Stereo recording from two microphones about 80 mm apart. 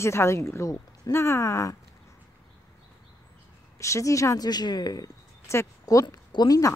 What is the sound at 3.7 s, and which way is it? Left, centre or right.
Speech, left.